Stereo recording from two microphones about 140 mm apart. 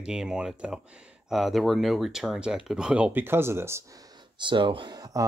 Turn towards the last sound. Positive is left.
turn(degrees=-25)  # may be behind; listen again after turning